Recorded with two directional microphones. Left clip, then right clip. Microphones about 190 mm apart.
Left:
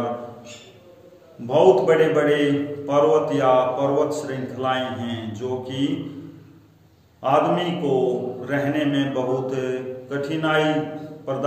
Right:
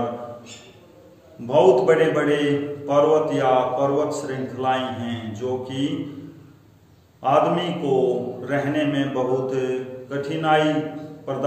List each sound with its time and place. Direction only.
1.5 s a man's voice: 5° right (ahead or behind)
7.2 s a man's voice: 5° left (ahead or behind)
8.5 s mantra: centre (ahead or behind)
11.3 s a man's voice: centre (ahead or behind)